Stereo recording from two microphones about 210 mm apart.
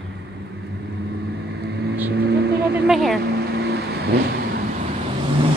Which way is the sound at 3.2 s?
50° right (ahead or behind).